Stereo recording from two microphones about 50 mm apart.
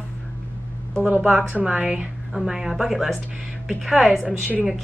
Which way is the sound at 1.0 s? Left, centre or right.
Centre.